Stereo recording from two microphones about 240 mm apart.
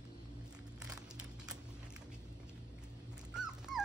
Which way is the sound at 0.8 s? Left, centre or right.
Centre.